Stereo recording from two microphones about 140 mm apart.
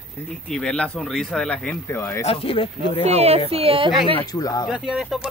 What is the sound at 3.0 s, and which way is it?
Speech, 50° right (ahead or behind).